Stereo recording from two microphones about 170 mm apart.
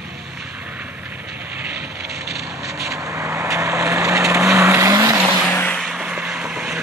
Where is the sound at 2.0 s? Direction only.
70° right (ahead or behind).